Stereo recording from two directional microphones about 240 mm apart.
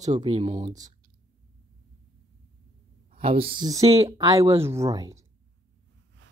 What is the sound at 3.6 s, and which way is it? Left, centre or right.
Speech, centre.